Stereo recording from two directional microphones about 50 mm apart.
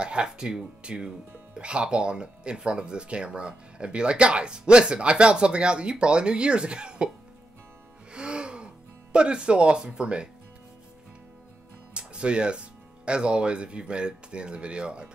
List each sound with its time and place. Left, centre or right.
0.0 s speech: centre
8.1 s music: centre
11.9 s speech: centre